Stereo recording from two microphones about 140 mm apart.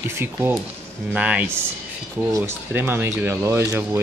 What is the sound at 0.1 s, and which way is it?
Speech, 15° right (ahead or behind).